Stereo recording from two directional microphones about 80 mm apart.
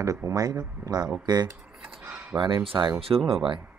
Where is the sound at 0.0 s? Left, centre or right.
Right.